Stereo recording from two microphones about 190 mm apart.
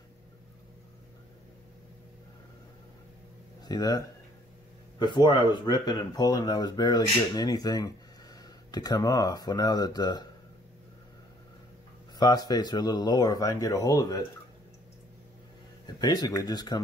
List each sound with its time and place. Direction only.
3.6 s speech: 20° left (ahead or behind)
12.2 s speech: 20° left (ahead or behind)
16.0 s speech: 20° left (ahead or behind)